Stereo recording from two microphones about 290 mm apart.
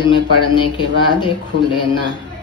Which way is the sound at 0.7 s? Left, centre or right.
Centre.